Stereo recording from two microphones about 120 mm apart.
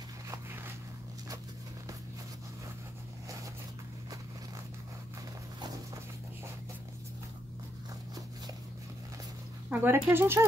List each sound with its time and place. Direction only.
9.7 s speech: 15° right (ahead or behind)